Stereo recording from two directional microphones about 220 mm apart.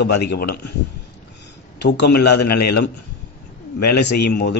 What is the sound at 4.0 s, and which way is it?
Speech, 50° left (ahead or behind).